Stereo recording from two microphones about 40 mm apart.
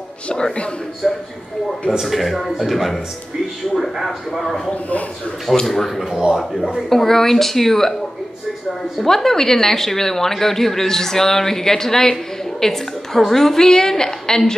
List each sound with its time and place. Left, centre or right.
0.3 s a man's voice: left
1.0 s a woman's voice: centre
1.9 s speech: centre
4.6 s speech: left
5.7 s speech: centre
6.9 s a woman's voice: centre
9.0 s a woman's voice: centre